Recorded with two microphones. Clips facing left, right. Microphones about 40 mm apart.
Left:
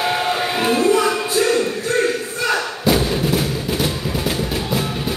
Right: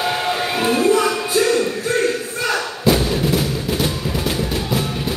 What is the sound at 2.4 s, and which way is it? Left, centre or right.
Music, centre.